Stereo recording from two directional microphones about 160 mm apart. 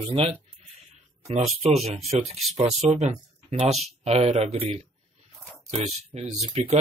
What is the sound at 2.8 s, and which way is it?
Speech, 45° right (ahead or behind).